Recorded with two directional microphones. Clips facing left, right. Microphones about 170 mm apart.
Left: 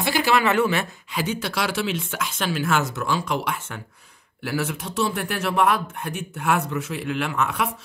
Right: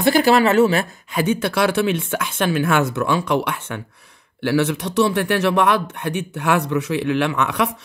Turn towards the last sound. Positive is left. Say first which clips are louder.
# right 4 dB
turn(degrees=-75)  # may be behind; listen again after turning